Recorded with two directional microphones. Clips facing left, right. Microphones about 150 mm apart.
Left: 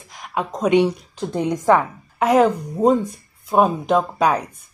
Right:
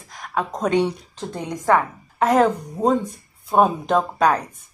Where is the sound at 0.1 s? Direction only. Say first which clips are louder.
Even; 5° left (ahead or behind).